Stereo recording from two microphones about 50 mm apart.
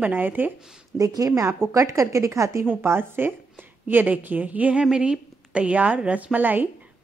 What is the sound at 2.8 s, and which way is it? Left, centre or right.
Speech, right.